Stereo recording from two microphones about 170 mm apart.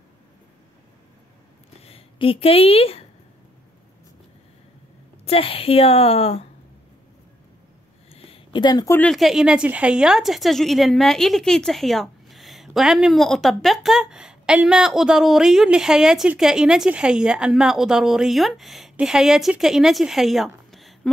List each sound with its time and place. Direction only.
1.8 s speech: 35° left (ahead or behind)
5.2 s a woman's voice: 35° left (ahead or behind)
8.1 s a sound: 30° left (ahead or behind)
8.9 s a woman's voice: 5° left (ahead or behind)